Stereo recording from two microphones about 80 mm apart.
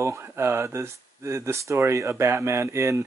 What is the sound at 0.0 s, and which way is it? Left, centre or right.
Speech, right.